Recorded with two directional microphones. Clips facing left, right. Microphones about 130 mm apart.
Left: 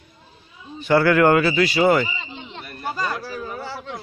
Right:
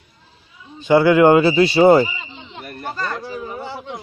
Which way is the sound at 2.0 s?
5° right (ahead or behind).